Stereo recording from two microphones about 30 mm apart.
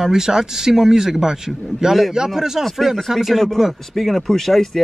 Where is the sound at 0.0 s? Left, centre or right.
Centre.